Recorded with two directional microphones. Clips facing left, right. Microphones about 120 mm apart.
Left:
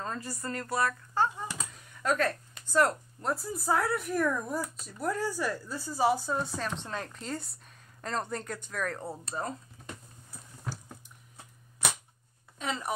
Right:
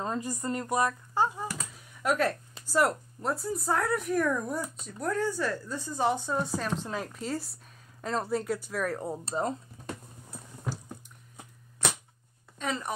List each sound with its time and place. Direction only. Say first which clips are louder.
0.0 s speech: right 4 dB; 20° right (ahead or behind)
1.7 s a sound: right 1 dB; 10° right (ahead or behind)
2.7 s speech: even; 5° right (ahead or behind)
9.2 s speech: right 6 dB; 25° right (ahead or behind)
12.5 s speech: right 1 dB; 5° left (ahead or behind)